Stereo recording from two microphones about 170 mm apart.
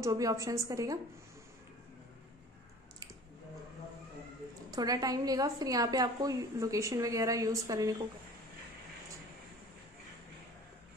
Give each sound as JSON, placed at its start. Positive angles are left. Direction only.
{"t": 0.0, "sound": "a woman's voice", "side_deg": -20}
{"t": 4.6, "sound": "a woman's voice", "side_deg": -20}